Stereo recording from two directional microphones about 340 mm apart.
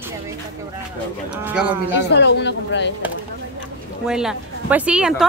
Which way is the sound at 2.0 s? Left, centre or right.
Left.